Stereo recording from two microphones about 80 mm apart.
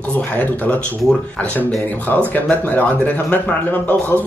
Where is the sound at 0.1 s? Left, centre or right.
Centre.